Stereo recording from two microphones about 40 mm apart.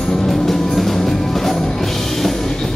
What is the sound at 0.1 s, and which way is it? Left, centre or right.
Music, centre.